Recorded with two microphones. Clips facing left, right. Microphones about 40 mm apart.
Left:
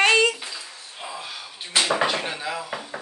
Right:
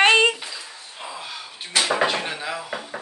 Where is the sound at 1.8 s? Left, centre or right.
Centre.